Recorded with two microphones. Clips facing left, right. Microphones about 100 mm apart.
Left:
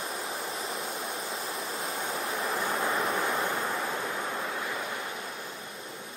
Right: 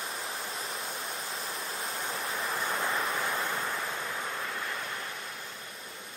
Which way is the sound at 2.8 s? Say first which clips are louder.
Left 2 dB; centre (ahead or behind).